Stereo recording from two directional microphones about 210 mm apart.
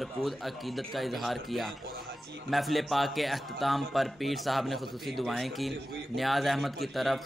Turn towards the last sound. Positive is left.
turn(degrees=0)  # may be behind; listen again after turning